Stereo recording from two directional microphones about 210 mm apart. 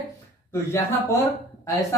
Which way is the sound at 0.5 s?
10° left (ahead or behind).